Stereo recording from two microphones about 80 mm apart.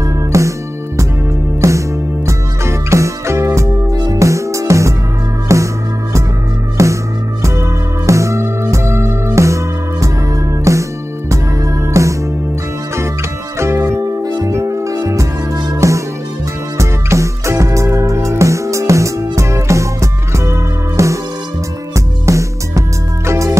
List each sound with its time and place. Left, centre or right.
0.0 s music: right
3.9 s music: right
4.2 s music: right
6.8 s music: right
8.1 s music: right
13.6 s music: right
14.2 s music: right
14.5 s music: right